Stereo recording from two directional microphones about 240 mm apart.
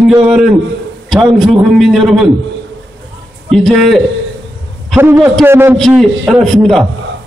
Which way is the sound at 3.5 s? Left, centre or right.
Centre.